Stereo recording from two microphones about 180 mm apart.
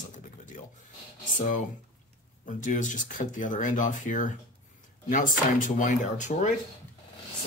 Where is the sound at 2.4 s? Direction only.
45° left (ahead or behind).